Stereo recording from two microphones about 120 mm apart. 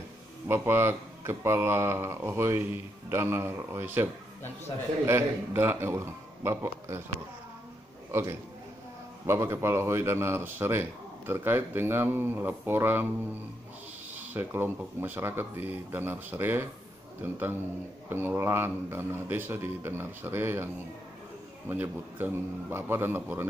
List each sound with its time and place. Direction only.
0.5 s speech: 20° right (ahead or behind)
8.1 s a man's voice: 25° right (ahead or behind)
14.3 s speech: 20° right (ahead or behind)